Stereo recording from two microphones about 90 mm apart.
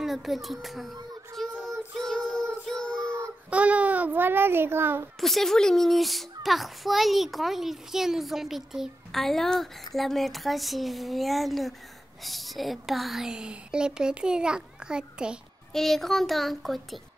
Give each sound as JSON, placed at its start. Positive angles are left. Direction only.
{"t": 0.0, "sound": "a child's voice", "side_deg": 0}
{"t": 1.4, "sound": "child singing", "side_deg": 0}
{"t": 3.4, "sound": "a child's voice", "side_deg": -15}
{"t": 5.2, "sound": "a child's voice", "side_deg": 5}
{"t": 15.7, "sound": "a child's voice", "side_deg": 5}